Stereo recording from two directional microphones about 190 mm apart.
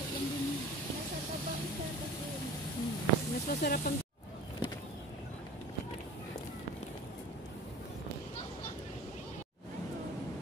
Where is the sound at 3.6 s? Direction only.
50° left (ahead or behind).